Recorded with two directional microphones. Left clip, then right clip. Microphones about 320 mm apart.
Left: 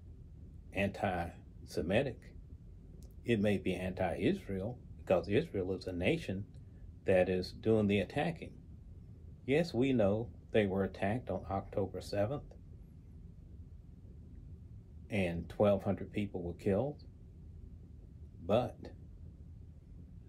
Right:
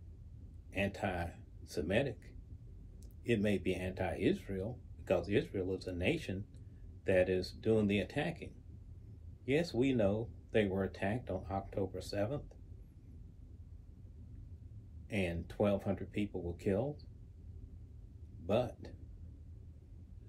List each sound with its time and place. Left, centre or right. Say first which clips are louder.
0.7 s speech: left 2 dB; centre
3.4 s speech: left 1 dB; centre
9.5 s speech: left 1 dB; centre
15.0 s speech: left 2 dB; centre
18.5 s speech: left 2 dB; centre